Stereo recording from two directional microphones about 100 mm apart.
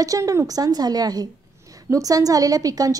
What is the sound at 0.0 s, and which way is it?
A woman's voice, 35° right (ahead or behind).